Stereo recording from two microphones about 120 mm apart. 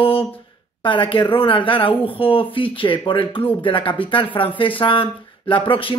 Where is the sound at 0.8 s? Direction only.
45° left (ahead or behind).